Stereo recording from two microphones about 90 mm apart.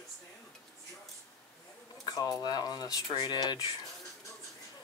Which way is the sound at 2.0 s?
45° left (ahead or behind).